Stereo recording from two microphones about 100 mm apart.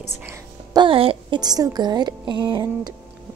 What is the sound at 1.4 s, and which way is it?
Speech, 40° right (ahead or behind).